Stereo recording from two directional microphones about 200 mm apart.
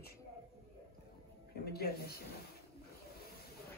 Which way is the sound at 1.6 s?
50° left (ahead or behind).